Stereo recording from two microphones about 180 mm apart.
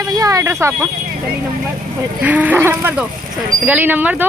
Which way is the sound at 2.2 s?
10° right (ahead or behind).